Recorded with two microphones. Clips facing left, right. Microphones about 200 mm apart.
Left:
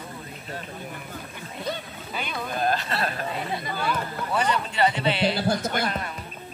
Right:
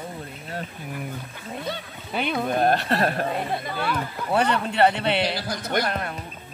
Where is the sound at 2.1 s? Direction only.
55° right (ahead or behind).